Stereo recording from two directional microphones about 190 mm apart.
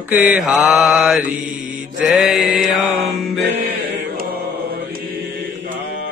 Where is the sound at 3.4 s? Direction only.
65° right (ahead or behind).